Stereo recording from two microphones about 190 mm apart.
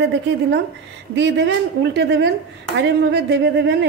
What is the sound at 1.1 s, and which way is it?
A woman's voice, 70° right (ahead or behind).